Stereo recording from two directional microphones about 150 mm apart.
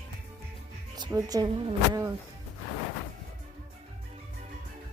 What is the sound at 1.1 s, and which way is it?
Speech, 25° right (ahead or behind).